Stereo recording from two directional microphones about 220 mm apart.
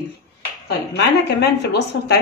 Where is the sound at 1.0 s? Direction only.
50° left (ahead or behind).